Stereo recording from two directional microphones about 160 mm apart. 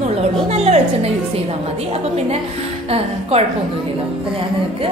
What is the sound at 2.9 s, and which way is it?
Speech, 40° right (ahead or behind).